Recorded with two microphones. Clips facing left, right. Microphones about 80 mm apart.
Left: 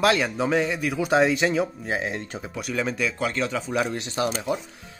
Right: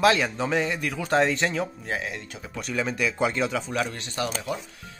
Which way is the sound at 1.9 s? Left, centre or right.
Left.